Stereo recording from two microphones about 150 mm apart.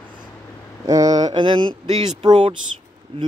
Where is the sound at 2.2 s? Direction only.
30° right (ahead or behind).